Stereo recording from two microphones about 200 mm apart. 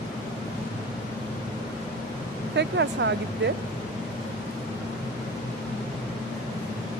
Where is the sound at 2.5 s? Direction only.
60° right (ahead or behind).